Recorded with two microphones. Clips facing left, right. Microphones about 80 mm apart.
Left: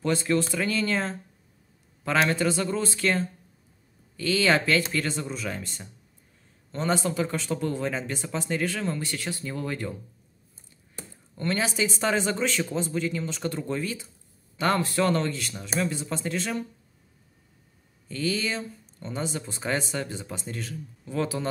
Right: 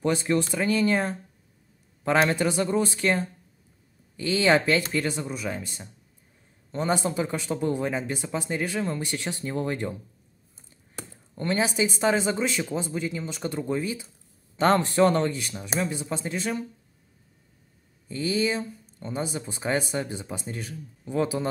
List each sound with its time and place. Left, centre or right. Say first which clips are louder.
0.0 s speech: right 1 dB; centre
11.3 s speech: right 2 dB; right
14.6 s speech: right 4 dB; right
18.0 s speech: right 3 dB; centre